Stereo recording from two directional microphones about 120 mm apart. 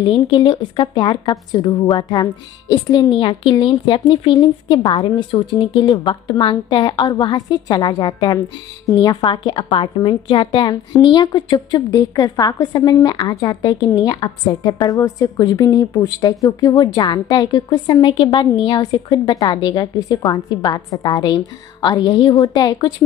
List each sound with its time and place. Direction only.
0.0 s a woman's voice: 40° left (ahead or behind)
9.2 s a woman's voice: 45° left (ahead or behind)